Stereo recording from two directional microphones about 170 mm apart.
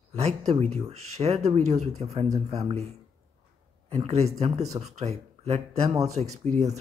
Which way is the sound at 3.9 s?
35° right (ahead or behind).